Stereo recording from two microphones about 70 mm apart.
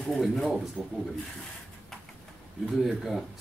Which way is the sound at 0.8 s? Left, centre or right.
Centre.